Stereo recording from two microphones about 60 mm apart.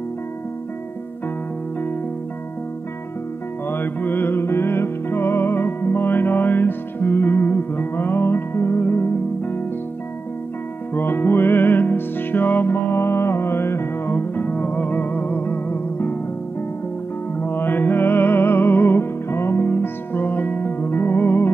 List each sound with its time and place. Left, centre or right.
3.6 s music: left
11.0 s music: left
17.4 s music: left